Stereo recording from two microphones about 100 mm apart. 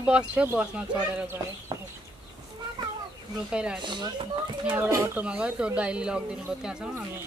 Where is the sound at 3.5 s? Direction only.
10° right (ahead or behind).